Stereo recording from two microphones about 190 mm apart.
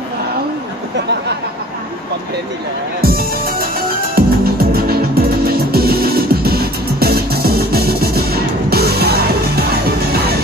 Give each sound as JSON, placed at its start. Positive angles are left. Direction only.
{"t": 3.0, "sound": "music", "side_deg": -50}